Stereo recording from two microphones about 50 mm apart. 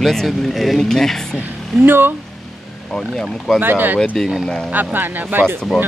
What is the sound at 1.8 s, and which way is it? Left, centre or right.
Speech, right.